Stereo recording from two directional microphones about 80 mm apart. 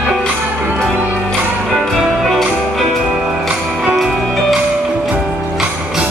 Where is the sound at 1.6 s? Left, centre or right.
Centre.